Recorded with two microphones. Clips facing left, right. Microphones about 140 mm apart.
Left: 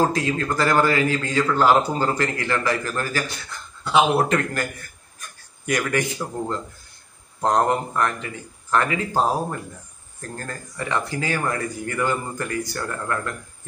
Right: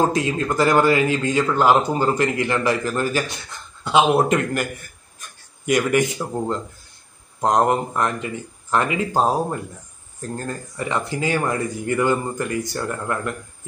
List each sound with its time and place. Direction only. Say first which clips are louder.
0.1 s a man's voice: right 2 dB; 20° right (ahead or behind)